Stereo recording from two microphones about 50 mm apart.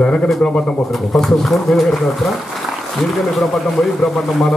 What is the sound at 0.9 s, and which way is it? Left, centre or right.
A man's voice, centre.